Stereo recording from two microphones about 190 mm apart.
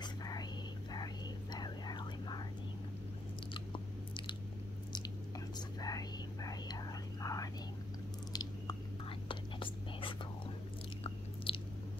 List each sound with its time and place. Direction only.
0.0 s whispering: 20° left (ahead or behind)
5.8 s whispering: 20° left (ahead or behind)
8.3 s chewing: 20° left (ahead or behind)
9.3 s whispering: 25° left (ahead or behind)
11.5 s chewing: 30° left (ahead or behind)